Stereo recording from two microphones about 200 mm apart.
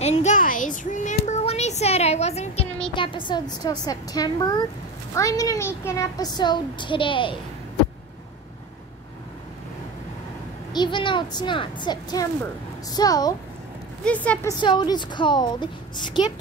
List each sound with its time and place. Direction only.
0.0 s a sound: 35° left (ahead or behind)
2.9 s a woman's voice: 25° left (ahead or behind)
10.7 s a woman's voice: 20° left (ahead or behind)
14.0 s a woman's voice: 5° left (ahead or behind)
14.6 s a woman's voice: 20° left (ahead or behind)